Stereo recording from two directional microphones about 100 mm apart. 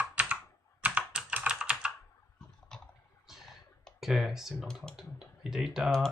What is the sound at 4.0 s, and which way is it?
Speech, 5° right (ahead or behind).